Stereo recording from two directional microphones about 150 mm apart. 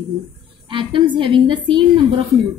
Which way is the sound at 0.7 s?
35° right (ahead or behind).